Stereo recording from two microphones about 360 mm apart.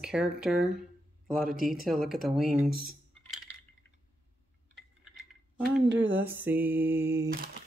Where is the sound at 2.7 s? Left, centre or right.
Right.